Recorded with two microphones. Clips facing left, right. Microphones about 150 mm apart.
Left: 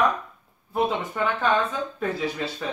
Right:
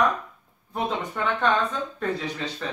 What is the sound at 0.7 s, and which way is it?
Speech, 5° left (ahead or behind).